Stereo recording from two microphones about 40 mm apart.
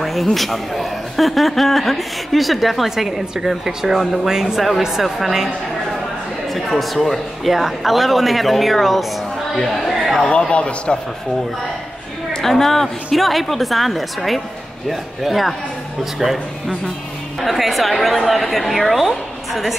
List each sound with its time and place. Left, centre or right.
0.0 s a man's voice: centre
4.0 s a man's voice: centre
6.5 s a man's voice: centre
10.5 s a man's voice: left
12.3 s a man's voice: centre